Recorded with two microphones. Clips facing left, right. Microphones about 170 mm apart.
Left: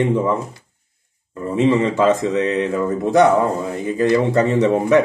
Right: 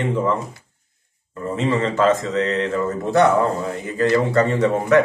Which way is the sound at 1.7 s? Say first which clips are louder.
Left 2 dB; 15° left (ahead or behind).